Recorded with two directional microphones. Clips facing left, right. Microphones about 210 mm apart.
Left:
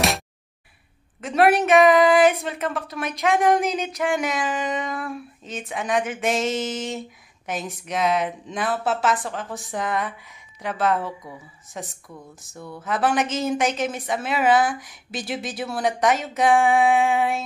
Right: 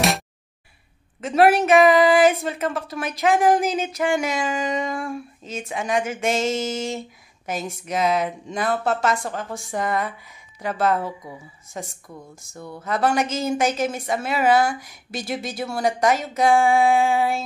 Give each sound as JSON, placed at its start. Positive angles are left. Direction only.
{"t": 1.2, "sound": "speech", "side_deg": 0}